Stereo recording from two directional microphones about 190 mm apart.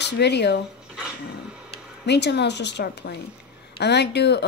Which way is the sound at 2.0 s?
60° left (ahead or behind).